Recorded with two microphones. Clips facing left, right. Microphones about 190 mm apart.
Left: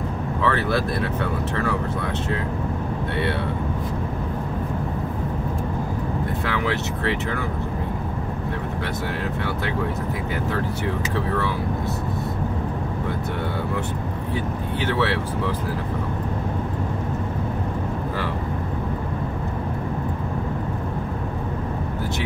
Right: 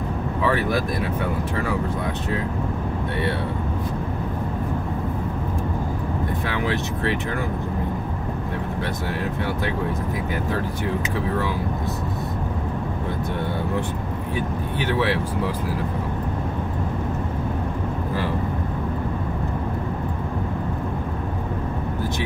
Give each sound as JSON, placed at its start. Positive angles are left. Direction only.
{"t": 0.4, "sound": "speech", "side_deg": -15}
{"t": 6.4, "sound": "speech", "side_deg": -15}
{"t": 14.8, "sound": "speech", "side_deg": -15}